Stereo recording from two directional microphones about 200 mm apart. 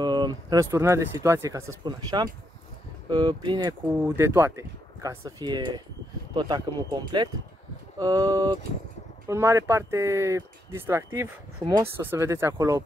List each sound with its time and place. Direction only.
0.0 s speech: 20° right (ahead or behind)